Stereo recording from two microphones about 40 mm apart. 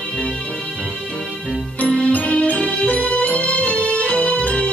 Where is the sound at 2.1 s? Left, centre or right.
Left.